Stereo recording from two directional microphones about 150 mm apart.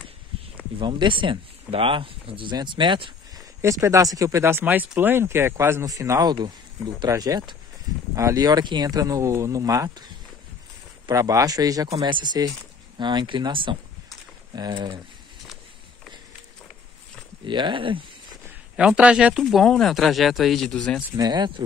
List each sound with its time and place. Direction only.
0.7 s speech: 30° right (ahead or behind)
3.6 s speech: 20° right (ahead or behind)
11.1 s speech: 25° right (ahead or behind)
17.5 s speech: 30° right (ahead or behind)
18.8 s speech: 5° right (ahead or behind)
21.2 s speech: 30° right (ahead or behind)